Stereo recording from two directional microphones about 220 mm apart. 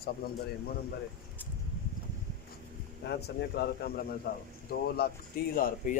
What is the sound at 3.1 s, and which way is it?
A man's voice, 50° left (ahead or behind).